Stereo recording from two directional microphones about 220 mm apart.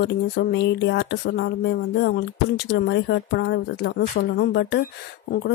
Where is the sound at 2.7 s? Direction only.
50° left (ahead or behind).